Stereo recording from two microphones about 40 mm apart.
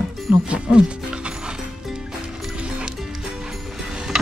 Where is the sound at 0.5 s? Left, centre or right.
Right.